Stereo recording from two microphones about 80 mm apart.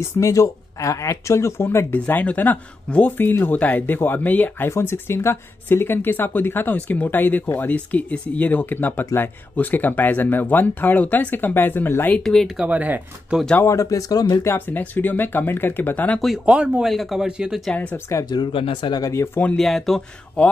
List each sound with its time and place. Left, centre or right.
0.2 s speech: left
2.0 s speech: centre
12.2 s speech: centre
12.5 s speech: centre
13.7 s speech: left
14.4 s speech: left
16.4 s speech: centre
16.8 s speech: centre
18.3 s speech: left
18.9 s speech: left
19.5 s speech: centre